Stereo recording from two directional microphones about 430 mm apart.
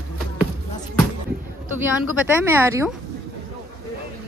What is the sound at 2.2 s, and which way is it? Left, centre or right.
Speech, centre.